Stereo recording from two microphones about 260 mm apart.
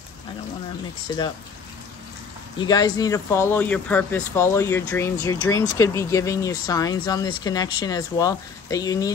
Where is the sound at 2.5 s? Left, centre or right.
Centre.